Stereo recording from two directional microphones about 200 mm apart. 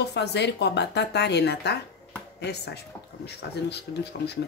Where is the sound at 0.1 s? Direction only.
55° left (ahead or behind).